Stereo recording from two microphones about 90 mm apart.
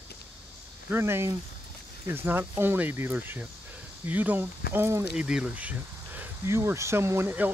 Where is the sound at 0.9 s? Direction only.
25° right (ahead or behind).